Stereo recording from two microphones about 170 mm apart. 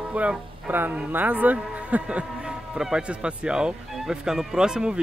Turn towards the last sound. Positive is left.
turn(degrees=-5)  # may be behind; listen again after turning